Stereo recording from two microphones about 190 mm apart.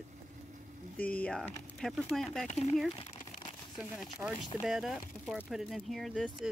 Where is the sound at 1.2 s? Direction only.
5° left (ahead or behind).